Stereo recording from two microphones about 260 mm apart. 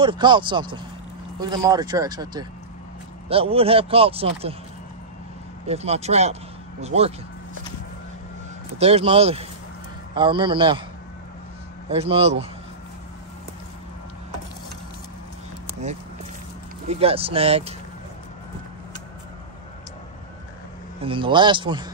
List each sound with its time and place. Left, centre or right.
0.0 s speech: centre
5.7 s speech: right
8.7 s speech: right
11.9 s speech: right
17.0 s speech: right
21.0 s speech: centre